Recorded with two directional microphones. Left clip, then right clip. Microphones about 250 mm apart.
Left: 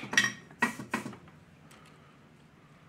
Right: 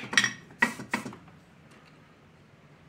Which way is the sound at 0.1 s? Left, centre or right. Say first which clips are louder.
Right 2 dB; right.